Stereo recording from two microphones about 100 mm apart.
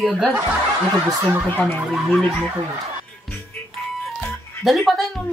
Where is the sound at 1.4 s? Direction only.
15° left (ahead or behind).